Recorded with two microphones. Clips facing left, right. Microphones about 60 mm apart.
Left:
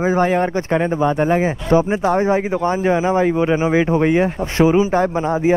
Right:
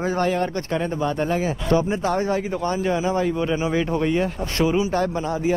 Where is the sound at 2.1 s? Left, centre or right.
Centre.